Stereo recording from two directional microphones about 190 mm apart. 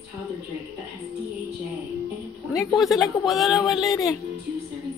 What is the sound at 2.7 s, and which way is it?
Speech, centre (ahead or behind).